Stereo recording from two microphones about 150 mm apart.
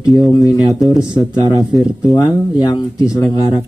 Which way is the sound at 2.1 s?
30° left (ahead or behind).